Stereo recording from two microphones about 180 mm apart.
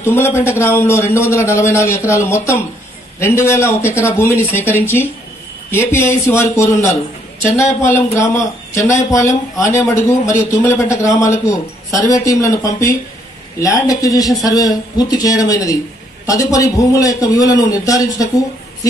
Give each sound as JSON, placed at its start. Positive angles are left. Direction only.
{"t": 0.0, "sound": "a man's voice", "side_deg": 15}
{"t": 7.5, "sound": "a man's voice", "side_deg": 15}